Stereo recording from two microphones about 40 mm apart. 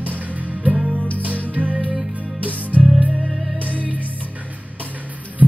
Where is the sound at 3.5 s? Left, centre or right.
Right.